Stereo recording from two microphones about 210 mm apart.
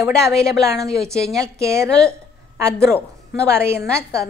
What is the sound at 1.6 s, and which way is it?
A woman's voice, 15° right (ahead or behind).